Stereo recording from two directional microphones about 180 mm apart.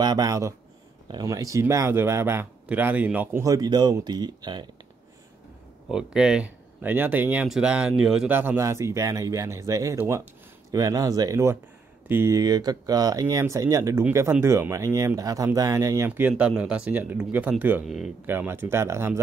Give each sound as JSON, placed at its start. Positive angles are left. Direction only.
{"t": 0.0, "sound": "speech", "side_deg": -20}
{"t": 5.9, "sound": "speech", "side_deg": -5}
{"t": 18.2, "sound": "speech", "side_deg": -10}